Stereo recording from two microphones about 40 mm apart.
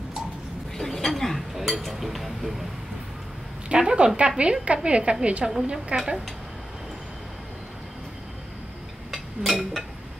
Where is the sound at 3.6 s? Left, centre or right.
Right.